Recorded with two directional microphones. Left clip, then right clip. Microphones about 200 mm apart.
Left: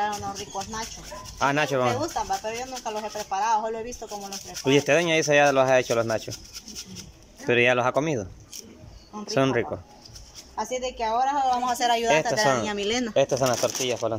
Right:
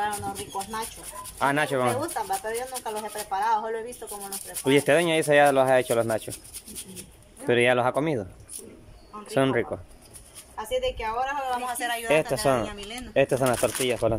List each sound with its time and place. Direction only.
1.4 s speech: centre (ahead or behind)
7.4 s speech: centre (ahead or behind)
9.3 s speech: centre (ahead or behind)
10.5 s speech: 20° left (ahead or behind)
12.1 s speech: 5° right (ahead or behind)
12.6 s speech: 50° left (ahead or behind)
13.1 s speech: 5° right (ahead or behind)